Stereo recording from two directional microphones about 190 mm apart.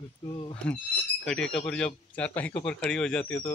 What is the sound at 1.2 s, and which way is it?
Speech, 5° left (ahead or behind).